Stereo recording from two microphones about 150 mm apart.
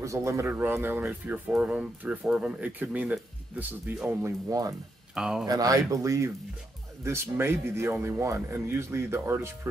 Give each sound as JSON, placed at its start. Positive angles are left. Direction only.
{"t": 0.0, "sound": "speech", "side_deg": -20}
{"t": 5.1, "sound": "speech", "side_deg": -5}
{"t": 5.5, "sound": "speech", "side_deg": -25}